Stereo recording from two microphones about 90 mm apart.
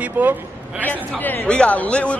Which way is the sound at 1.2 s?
20° left (ahead or behind).